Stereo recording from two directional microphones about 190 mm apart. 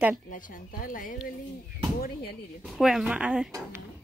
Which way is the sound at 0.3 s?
45° left (ahead or behind).